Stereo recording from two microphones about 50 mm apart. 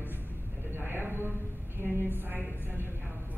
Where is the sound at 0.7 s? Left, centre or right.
Right.